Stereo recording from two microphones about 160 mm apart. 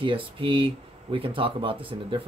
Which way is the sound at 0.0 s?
35° right (ahead or behind).